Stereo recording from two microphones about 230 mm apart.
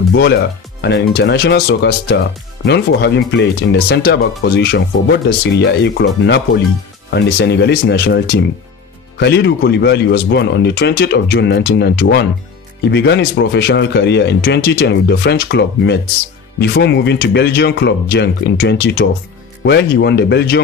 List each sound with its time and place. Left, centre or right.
0.1 s speech: left